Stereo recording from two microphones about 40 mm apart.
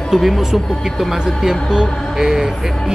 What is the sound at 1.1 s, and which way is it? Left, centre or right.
A man's voice, centre.